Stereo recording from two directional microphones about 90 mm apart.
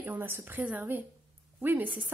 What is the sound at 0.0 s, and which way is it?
Speech, 20° right (ahead or behind).